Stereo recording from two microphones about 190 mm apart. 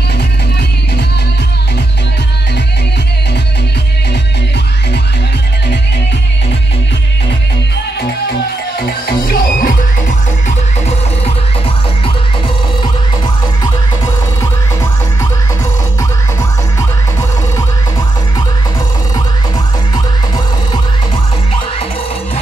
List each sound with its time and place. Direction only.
9.0 s music: 50° left (ahead or behind)